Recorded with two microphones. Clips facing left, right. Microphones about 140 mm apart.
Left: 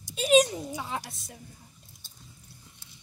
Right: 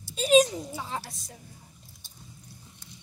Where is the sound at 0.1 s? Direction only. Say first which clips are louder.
Right 1 dB; centre (ahead or behind).